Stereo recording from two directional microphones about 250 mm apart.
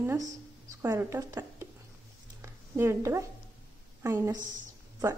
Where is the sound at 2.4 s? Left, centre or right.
Centre.